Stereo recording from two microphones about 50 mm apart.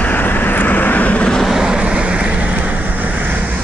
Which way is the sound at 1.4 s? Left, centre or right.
Centre.